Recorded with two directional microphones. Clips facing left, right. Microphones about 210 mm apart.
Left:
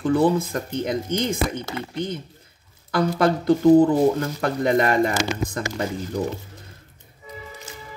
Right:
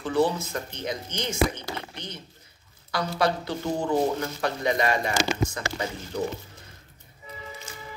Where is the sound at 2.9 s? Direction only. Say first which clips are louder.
Left 6 dB; 50° left (ahead or behind).